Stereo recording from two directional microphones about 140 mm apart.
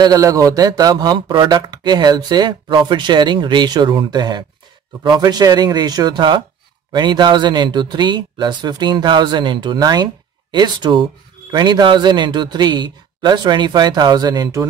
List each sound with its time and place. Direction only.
0.0 s a man's voice: 25° right (ahead or behind)